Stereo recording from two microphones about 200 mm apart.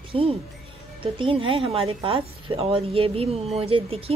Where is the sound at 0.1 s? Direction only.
30° right (ahead or behind).